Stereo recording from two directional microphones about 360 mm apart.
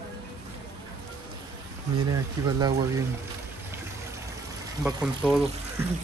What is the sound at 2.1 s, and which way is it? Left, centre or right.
Speech, centre.